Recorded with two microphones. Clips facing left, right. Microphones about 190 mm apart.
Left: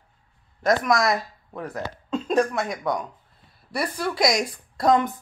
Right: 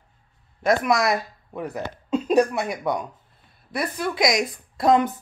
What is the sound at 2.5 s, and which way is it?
Speech, 5° right (ahead or behind).